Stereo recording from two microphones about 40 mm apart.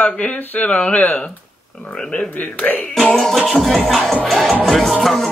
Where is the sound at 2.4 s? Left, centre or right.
Left.